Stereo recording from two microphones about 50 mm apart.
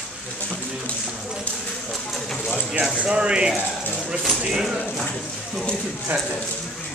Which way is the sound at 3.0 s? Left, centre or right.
Centre.